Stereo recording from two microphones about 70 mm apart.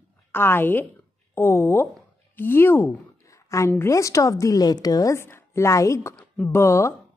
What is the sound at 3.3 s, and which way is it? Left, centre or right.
A woman's voice, left.